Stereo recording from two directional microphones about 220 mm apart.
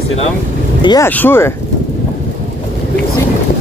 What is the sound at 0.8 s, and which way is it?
Speech, 15° left (ahead or behind).